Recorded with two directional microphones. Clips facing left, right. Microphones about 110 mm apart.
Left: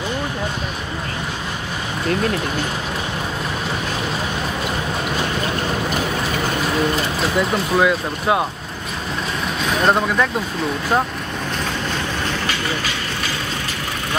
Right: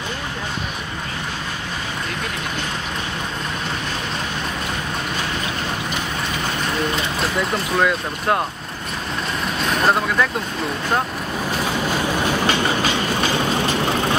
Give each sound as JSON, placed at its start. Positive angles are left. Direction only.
{"t": 7.2, "sound": "speech", "side_deg": 0}
{"t": 9.6, "sound": "speech", "side_deg": 0}
{"t": 11.5, "sound": "train", "side_deg": -10}
{"t": 12.4, "sound": "train", "side_deg": -30}